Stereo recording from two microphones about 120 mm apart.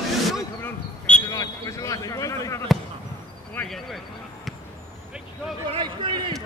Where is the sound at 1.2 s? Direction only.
30° left (ahead or behind).